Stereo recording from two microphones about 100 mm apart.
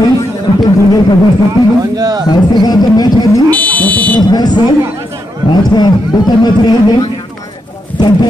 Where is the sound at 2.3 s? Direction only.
45° left (ahead or behind).